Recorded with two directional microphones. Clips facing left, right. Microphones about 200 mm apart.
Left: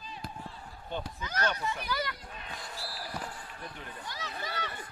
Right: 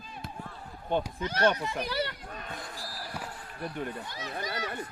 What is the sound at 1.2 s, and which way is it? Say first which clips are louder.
Speech: right 4 dB; 30° right (ahead or behind).